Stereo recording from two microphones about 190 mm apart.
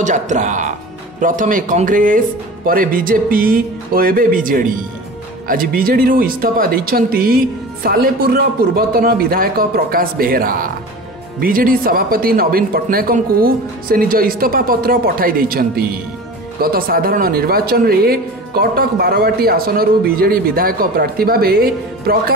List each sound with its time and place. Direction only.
0.0 s speech: 40° right (ahead or behind)